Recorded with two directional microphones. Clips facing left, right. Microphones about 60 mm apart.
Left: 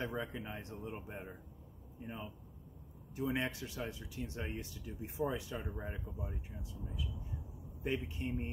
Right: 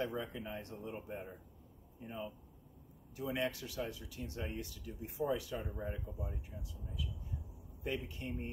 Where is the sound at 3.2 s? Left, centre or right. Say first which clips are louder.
Left 1 dB; left.